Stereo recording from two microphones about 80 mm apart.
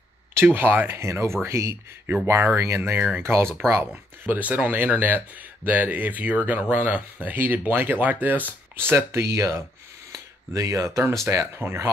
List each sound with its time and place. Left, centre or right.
0.6 s speech: right
4.2 s speech: right